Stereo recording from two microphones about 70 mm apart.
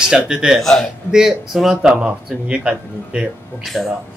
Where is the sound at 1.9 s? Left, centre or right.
Centre.